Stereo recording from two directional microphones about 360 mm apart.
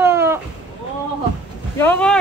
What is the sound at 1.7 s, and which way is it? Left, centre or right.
Speech, centre.